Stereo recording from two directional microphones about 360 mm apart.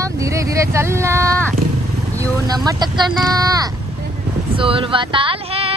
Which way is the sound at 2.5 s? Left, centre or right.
Centre.